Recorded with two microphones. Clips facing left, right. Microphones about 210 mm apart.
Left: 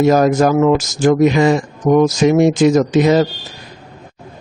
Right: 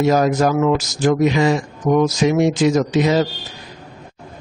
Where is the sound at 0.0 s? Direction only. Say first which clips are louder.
Left 4 dB; 50° left (ahead or behind).